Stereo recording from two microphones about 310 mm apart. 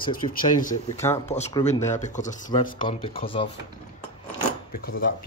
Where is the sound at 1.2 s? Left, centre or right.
Left.